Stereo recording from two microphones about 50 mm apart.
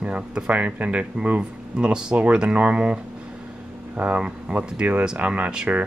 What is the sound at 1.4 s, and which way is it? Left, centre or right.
Speech, centre.